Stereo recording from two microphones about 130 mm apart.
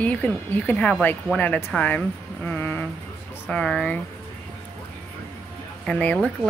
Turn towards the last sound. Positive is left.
turn(degrees=5)  # may be behind; listen again after turning